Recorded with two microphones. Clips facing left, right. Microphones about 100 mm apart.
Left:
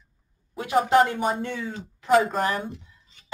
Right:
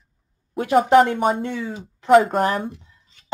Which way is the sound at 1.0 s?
55° right (ahead or behind).